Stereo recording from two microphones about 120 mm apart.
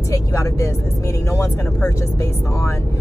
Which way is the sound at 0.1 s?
25° left (ahead or behind).